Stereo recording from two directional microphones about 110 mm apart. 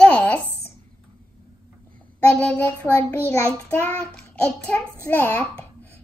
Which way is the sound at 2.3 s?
15° left (ahead or behind).